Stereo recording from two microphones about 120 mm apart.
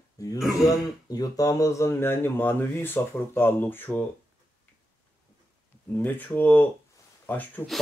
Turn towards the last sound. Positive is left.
turn(degrees=15)  # may be behind; listen again after turning